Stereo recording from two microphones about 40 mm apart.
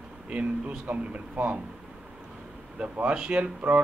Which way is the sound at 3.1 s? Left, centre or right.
Right.